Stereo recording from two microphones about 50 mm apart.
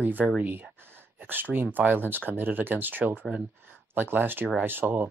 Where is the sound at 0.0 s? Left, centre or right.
Right.